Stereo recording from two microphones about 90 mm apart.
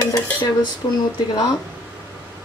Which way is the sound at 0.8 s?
60° left (ahead or behind).